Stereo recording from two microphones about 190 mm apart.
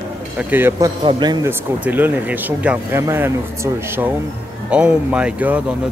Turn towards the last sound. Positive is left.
turn(degrees=-5)  # may be behind; listen again after turning